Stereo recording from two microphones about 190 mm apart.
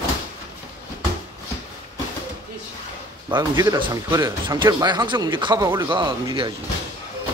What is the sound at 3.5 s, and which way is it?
Speech, 20° right (ahead or behind).